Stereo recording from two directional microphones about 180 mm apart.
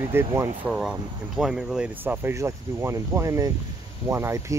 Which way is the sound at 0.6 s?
Centre (ahead or behind).